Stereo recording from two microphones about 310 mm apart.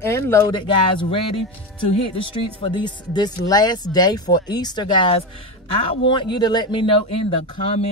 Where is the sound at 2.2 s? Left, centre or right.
Centre.